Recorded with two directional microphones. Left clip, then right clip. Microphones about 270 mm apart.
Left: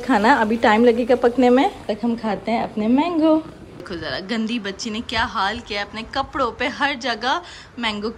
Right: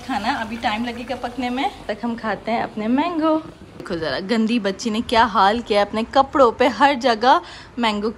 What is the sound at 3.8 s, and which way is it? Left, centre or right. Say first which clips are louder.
A woman's voice: right 4 dB; centre.